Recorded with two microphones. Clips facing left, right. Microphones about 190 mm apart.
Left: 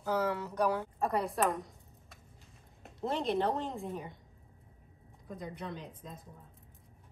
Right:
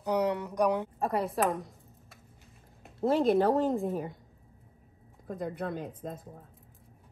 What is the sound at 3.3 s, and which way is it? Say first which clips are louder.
Speech: right 7 dB; 40° right (ahead or behind).